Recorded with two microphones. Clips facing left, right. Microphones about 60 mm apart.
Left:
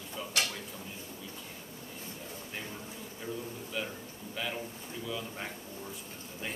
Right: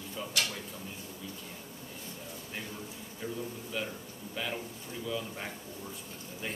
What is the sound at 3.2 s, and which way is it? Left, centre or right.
Speech, centre.